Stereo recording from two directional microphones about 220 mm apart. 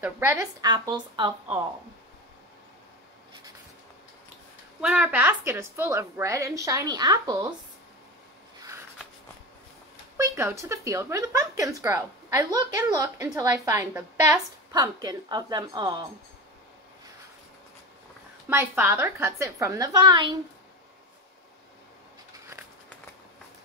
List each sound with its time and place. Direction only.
0.0 s speech: 10° right (ahead or behind)
4.8 s speech: 5° right (ahead or behind)
8.5 s a sound: 15° right (ahead or behind)
10.1 s speech: 10° right (ahead or behind)
18.5 s speech: 10° right (ahead or behind)